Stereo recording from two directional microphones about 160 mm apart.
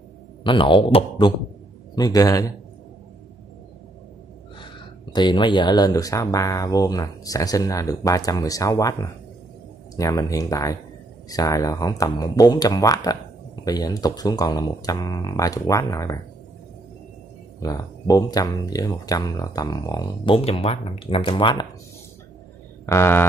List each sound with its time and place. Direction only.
0.4 s speech: 30° left (ahead or behind)
5.1 s speech: 30° left (ahead or behind)
9.9 s speech: 20° left (ahead or behind)
17.6 s speech: 20° left (ahead or behind)
20.3 s speech: 35° left (ahead or behind)
22.8 s mantra: 15° left (ahead or behind)